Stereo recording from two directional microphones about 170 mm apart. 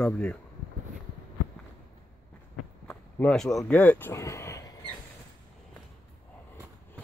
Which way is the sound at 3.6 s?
10° left (ahead or behind).